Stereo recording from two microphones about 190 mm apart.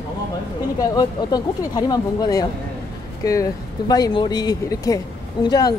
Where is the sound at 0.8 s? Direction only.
20° left (ahead or behind).